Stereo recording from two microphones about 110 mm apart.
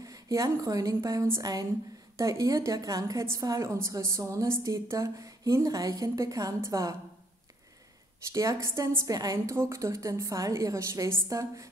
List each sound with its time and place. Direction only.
0.0 s a woman's voice: 30° right (ahead or behind)
8.3 s a woman's voice: 30° right (ahead or behind)